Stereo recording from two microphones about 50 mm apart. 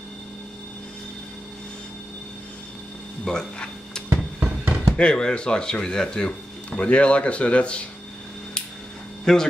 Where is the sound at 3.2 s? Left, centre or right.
Centre.